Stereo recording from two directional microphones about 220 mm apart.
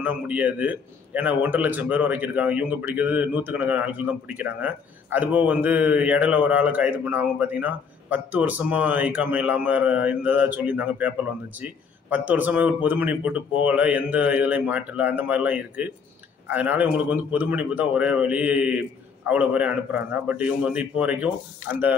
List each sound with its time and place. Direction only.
0.0 s a man's voice: 5° right (ahead or behind)